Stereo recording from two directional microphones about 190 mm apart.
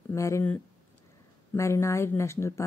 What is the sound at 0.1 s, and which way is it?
A woman's voice, 15° left (ahead or behind).